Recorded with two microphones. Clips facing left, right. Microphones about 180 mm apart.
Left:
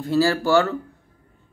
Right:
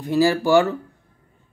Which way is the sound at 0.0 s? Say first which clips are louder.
Right 1 dB; 15° right (ahead or behind).